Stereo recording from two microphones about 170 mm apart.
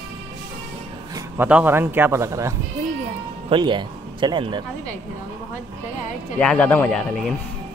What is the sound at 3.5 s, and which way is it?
Speech, 25° right (ahead or behind).